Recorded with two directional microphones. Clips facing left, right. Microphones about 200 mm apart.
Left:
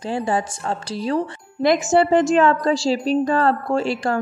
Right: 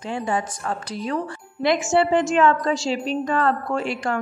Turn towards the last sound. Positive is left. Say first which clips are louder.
# left 4 dB
turn(degrees=35)  # may be behind; listen again after turning